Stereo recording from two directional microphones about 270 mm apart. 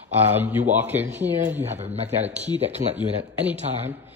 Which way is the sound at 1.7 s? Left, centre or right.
Right.